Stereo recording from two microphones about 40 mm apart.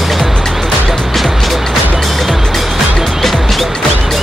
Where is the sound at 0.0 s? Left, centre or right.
Centre.